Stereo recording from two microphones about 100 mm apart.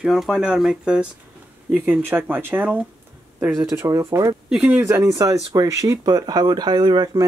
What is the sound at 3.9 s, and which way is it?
Speech, 30° right (ahead or behind).